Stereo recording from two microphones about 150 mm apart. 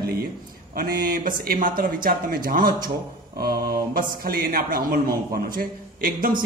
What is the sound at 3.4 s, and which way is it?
A man's voice, 90° right.